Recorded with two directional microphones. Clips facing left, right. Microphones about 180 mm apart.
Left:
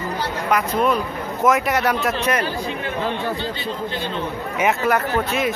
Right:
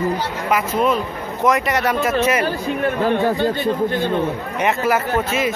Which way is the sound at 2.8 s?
50° right (ahead or behind).